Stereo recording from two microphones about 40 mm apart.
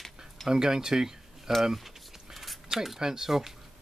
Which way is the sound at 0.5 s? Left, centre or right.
Centre.